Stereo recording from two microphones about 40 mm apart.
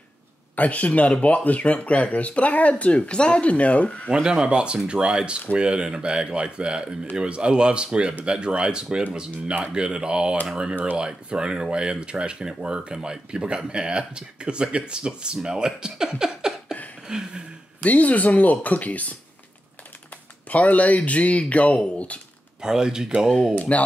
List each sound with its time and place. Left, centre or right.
0.6 s speech: left
3.0 s speech: left
4.1 s speech: right
17.8 s speech: left
20.4 s speech: left
22.6 s speech: centre
23.5 s speech: left